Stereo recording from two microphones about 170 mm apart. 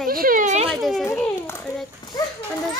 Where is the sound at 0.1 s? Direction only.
55° right (ahead or behind).